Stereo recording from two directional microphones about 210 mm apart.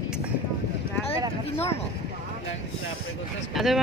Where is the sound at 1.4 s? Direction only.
30° left (ahead or behind).